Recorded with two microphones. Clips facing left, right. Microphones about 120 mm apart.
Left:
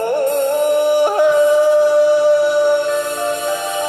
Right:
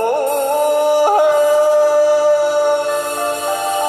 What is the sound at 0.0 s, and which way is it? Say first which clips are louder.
Music: even; 40° right (ahead or behind).